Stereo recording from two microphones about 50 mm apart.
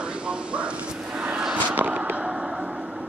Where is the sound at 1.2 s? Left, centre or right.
Right.